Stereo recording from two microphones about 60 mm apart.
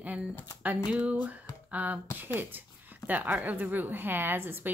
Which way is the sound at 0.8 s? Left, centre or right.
Right.